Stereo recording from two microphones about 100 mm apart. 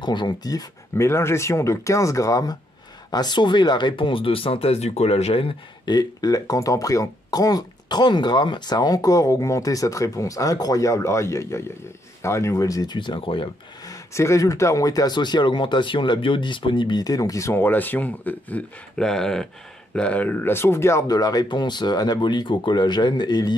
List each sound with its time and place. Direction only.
0.0 s speech: 45° left (ahead or behind); by 5.5 s 80° left
5.9 s speech: 40° left (ahead or behind)
12.9 s speech: 55° left (ahead or behind)
13.8 s speech: 30° left (ahead or behind)
19.0 s speech: 5° left (ahead or behind); by 21.0 s 25° left (ahead or behind)
21.1 s speech: 40° left (ahead or behind)